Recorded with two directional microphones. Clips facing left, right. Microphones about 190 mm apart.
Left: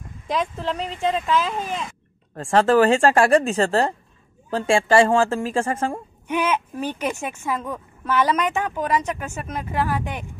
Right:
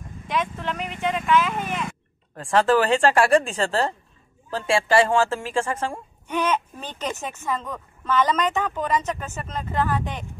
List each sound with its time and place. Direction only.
0.3 s speech: 35° left (ahead or behind)
6.2 s speech: 10° left (ahead or behind)